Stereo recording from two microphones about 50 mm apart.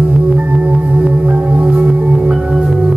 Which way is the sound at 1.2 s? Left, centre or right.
Right.